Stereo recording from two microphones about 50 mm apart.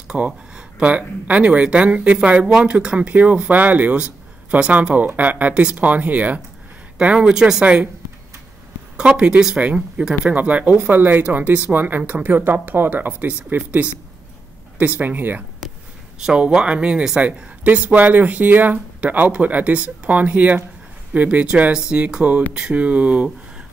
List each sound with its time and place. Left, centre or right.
0.1 s speech: right
7.0 s speech: right
7.6 s speech: right
9.2 s speech: centre
10.3 s speech: right
14.8 s speech: right
16.3 s speech: right
17.6 s speech: right
21.7 s speech: centre